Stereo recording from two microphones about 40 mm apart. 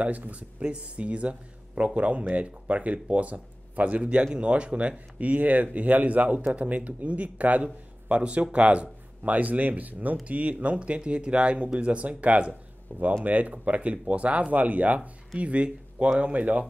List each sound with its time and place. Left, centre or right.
0.0 s speech: right
7.6 s speech: right